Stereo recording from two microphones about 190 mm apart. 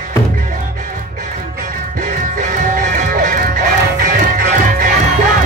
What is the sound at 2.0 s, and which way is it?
Music, 45° right (ahead or behind).